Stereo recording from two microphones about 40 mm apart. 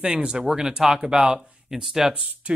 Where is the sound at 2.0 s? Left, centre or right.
Right.